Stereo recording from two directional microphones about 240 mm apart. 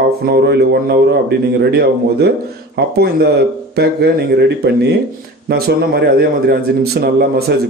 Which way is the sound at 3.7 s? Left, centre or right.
Right.